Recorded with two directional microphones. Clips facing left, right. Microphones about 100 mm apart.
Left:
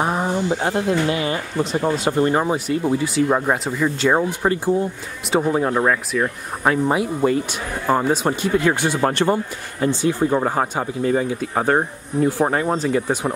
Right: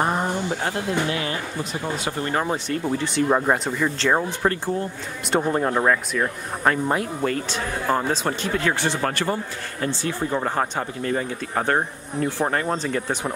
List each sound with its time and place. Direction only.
0.0 s a sound: 5° left (ahead or behind)
0.6 s speech: 20° left (ahead or behind)
2.4 s speech: 10° left (ahead or behind)